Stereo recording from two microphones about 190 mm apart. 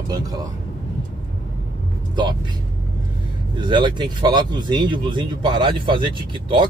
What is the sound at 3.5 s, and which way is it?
Speech, 25° right (ahead or behind).